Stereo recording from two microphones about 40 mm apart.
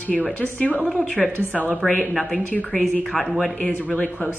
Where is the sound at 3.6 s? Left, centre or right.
Left.